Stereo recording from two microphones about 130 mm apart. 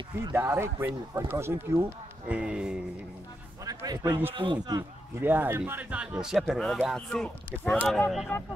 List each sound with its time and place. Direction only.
0.2 s speech: 20° right (ahead or behind)
2.2 s speech: 10° right (ahead or behind)
3.6 s a man's voice: 30° right (ahead or behind)
5.2 s speech: 15° right (ahead or behind); by 8.5 s 20° left (ahead or behind)